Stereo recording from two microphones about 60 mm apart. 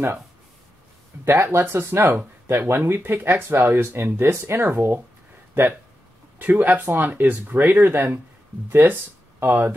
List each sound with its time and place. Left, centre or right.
1.2 s speech: right